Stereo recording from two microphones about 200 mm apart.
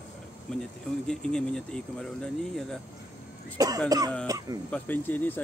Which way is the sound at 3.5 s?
15° right (ahead or behind).